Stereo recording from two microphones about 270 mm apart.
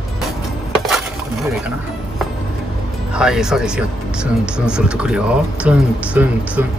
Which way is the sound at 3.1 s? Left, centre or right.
Centre.